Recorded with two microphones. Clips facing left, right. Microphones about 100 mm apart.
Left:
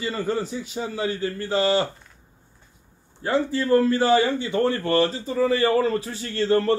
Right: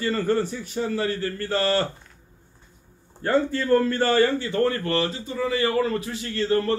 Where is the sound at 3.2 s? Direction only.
5° left (ahead or behind).